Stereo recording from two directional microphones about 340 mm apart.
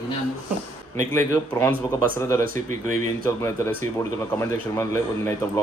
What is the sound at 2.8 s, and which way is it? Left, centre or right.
Speech, right.